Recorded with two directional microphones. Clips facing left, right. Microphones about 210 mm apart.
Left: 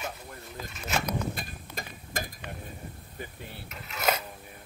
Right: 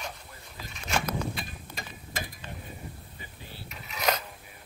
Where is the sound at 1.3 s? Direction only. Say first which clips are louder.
Left 1 dB; 45° left (ahead or behind).